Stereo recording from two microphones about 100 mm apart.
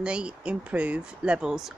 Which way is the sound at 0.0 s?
10° right (ahead or behind).